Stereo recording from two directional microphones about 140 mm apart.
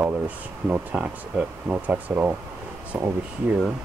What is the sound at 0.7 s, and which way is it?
Speech, 10° right (ahead or behind).